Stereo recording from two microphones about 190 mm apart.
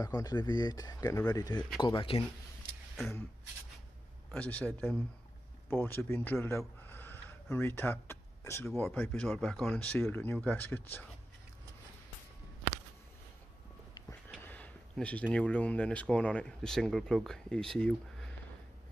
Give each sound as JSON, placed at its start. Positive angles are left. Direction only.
{"t": 0.0, "sound": "speech", "side_deg": 20}
{"t": 4.3, "sound": "speech", "side_deg": 10}
{"t": 14.4, "sound": "a sound", "side_deg": 10}
{"t": 15.3, "sound": "speech", "side_deg": 5}